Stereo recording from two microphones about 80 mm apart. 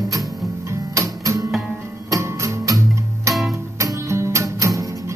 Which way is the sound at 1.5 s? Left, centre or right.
Centre.